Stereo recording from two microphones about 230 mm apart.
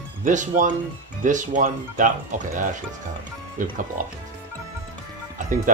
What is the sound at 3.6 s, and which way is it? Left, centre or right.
Speech, right.